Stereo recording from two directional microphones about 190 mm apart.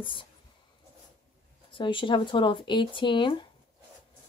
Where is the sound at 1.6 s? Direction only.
25° left (ahead or behind).